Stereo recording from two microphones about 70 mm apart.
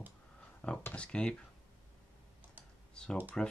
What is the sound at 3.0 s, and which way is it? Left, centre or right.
Speech, centre.